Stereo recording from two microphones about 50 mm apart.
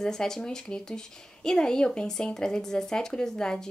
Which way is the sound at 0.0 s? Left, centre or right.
Centre.